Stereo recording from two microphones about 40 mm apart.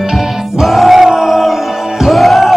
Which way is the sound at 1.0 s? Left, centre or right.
Centre.